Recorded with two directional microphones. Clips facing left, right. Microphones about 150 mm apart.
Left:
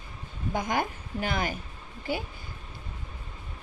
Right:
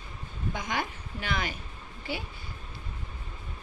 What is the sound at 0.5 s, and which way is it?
Speech, 50° left (ahead or behind).